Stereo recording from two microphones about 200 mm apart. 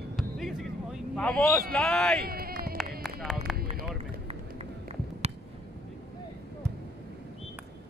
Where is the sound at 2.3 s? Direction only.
50° right (ahead or behind).